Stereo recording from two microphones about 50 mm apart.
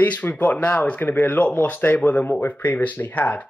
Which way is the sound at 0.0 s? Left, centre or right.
Left.